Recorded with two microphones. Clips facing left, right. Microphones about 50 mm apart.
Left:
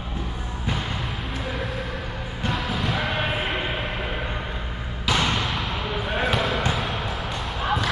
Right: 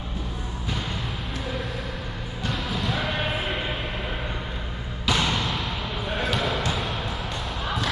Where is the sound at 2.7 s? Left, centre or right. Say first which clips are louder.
Even; centre.